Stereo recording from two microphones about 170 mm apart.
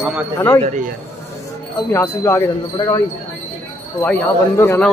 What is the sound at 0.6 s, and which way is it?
Speech, 45° right (ahead or behind).